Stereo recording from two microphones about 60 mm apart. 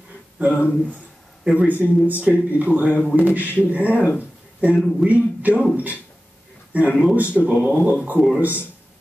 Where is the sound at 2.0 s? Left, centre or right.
Right.